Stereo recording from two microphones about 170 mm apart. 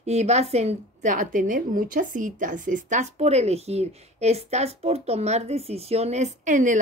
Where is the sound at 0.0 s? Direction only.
40° right (ahead or behind).